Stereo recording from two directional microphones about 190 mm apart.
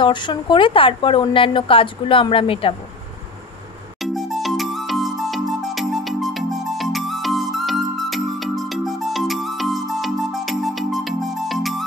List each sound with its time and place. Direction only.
0.0 s speech: 25° left (ahead or behind)
4.0 s music: centre (ahead or behind)